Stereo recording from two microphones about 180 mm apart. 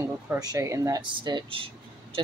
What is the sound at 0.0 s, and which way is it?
Speech, 15° right (ahead or behind).